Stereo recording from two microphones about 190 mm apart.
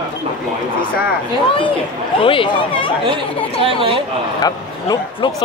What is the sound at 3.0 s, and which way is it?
Speech, 25° right (ahead or behind).